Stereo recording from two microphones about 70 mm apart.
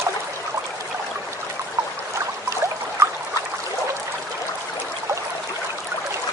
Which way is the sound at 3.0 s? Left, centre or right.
Right.